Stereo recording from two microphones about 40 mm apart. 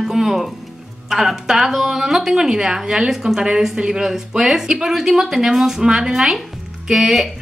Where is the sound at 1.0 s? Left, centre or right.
Centre.